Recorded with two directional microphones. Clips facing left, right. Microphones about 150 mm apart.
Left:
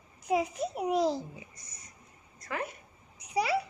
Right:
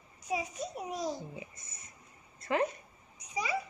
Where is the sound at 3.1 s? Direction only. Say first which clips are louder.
Left 6 dB; 65° left (ahead or behind).